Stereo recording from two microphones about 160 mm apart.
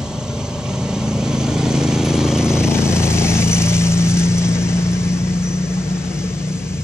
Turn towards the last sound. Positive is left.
turn(degrees=15)  # may be behind; listen again after turning